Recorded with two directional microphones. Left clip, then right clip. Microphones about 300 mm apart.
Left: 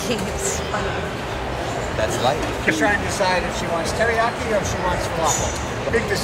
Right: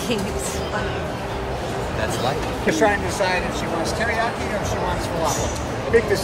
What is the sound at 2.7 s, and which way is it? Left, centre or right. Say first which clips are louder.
Speech: right 1 dB; right.